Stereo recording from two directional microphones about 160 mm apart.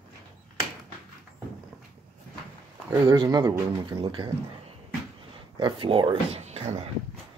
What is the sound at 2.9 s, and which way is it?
Speech, 20° right (ahead or behind).